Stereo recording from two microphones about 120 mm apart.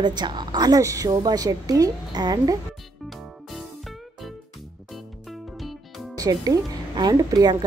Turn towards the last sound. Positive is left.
turn(degrees=-35)  # may be behind; listen again after turning